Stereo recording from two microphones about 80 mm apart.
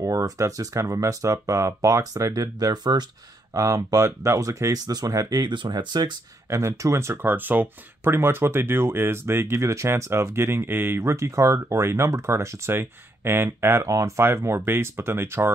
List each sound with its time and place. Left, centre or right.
0.0 s speech: right
3.5 s speech: right
4.7 s speech: right
5.4 s speech: right
6.5 s speech: right
13.8 s speech: right